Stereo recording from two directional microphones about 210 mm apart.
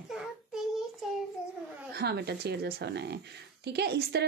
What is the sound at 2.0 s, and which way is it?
A woman's voice, 50° right (ahead or behind).